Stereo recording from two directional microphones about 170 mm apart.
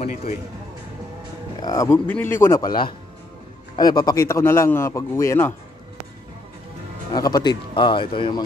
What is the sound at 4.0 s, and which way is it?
Speech, 20° left (ahead or behind).